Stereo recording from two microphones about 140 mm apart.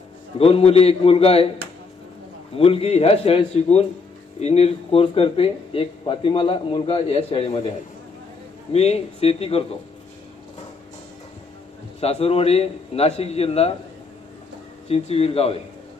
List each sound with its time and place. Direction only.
0.4 s speech: 45° left (ahead or behind)
2.5 s speech: 45° left (ahead or behind)
8.7 s speech: 50° left (ahead or behind)
12.0 s speech: 45° left (ahead or behind)
14.9 s speech: 45° left (ahead or behind)